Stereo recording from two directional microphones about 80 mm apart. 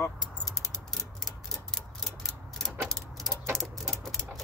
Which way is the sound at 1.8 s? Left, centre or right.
Centre.